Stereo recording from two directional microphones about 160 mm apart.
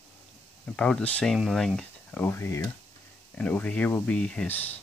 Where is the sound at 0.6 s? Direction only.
5° left (ahead or behind).